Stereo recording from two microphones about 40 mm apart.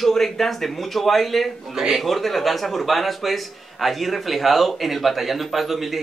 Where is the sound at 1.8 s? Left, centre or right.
Centre.